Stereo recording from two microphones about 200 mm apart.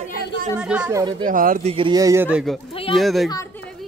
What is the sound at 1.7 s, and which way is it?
A man's voice, 20° right (ahead or behind).